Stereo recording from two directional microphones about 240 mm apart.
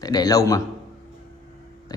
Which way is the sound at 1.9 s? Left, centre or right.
Centre.